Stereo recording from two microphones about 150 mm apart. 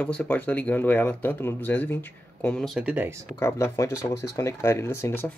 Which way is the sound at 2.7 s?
10° right (ahead or behind).